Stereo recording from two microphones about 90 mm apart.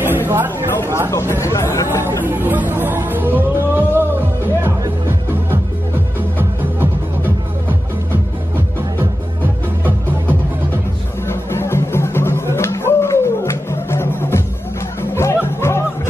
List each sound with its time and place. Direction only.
0.0 s a sound: 25° right (ahead or behind)
0.8 s speech: 30° right (ahead or behind)
1.3 s speech: 30° left (ahead or behind)
2.0 s chatter: 25° right (ahead or behind)
6.3 s music: 20° right (ahead or behind)
9.4 s music: 20° right (ahead or behind)
11.2 s music: 25° left (ahead or behind)